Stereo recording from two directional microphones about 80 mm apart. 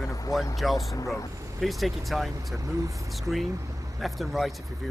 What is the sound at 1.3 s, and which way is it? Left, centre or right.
Vehicle, right.